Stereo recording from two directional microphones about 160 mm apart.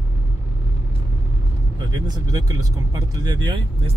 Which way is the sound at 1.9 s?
25° right (ahead or behind).